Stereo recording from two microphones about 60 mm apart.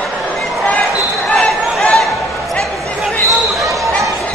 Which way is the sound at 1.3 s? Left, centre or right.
Centre.